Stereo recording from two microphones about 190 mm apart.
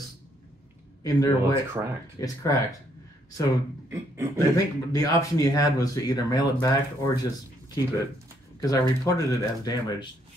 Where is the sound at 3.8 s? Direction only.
10° right (ahead or behind).